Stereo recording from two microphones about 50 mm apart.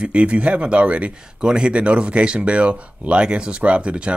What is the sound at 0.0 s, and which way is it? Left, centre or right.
Speech, right.